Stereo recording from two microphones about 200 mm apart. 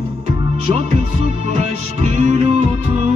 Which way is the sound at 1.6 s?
35° right (ahead or behind).